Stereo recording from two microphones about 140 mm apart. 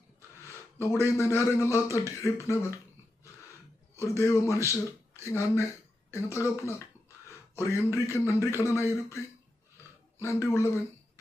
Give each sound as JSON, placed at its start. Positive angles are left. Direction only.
{"t": 1.0, "sound": "speech", "side_deg": 20}
{"t": 3.9, "sound": "speech", "side_deg": 20}
{"t": 10.2, "sound": "speech", "side_deg": 20}